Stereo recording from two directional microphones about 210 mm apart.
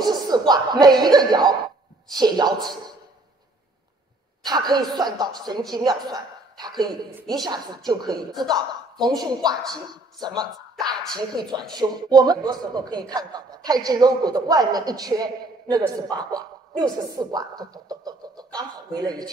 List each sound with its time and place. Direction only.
0.3 s a man's voice: 20° right (ahead or behind)
4.5 s a man's voice: 20° right (ahead or behind)